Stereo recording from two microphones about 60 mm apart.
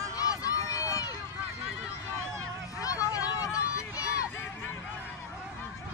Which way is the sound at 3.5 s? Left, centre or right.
Left.